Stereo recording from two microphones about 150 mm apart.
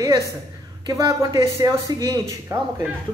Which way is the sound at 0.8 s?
25° right (ahead or behind).